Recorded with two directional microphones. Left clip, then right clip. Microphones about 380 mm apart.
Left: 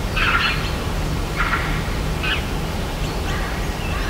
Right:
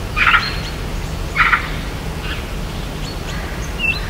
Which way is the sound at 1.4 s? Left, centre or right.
Right.